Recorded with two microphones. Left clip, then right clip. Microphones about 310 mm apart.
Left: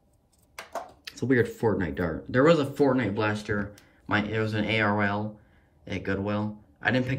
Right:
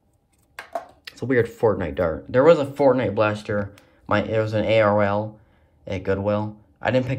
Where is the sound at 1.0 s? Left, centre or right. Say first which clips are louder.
Right 3 dB; centre.